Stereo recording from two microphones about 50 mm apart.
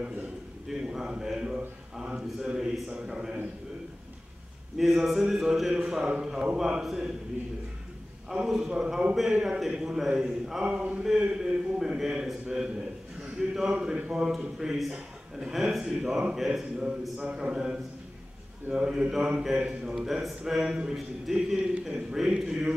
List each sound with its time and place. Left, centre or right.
0.7 s a sound: centre
2.0 s a man's voice: centre
4.7 s a man's voice: centre
8.3 s a man's voice: centre
9.1 s a man's voice: centre
17.4 s a man's voice: centre